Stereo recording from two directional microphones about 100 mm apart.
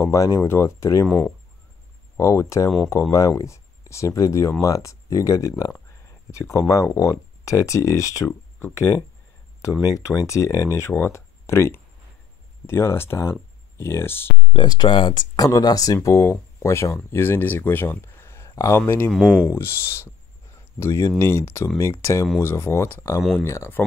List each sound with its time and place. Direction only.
0.0 s speech: 30° left (ahead or behind)
2.1 s speech: 30° left (ahead or behind)
6.0 s a sound: 30° left (ahead or behind)
7.0 s speech: 35° left (ahead or behind)
14.4 s speech: 50° left (ahead or behind); by 18.5 s 25° left (ahead or behind)
18.5 s a sound: 35° left (ahead or behind)
18.8 s speech: 20° left (ahead or behind)
19.0 s speech: 5° right (ahead or behind)
19.5 s speech: 25° left (ahead or behind)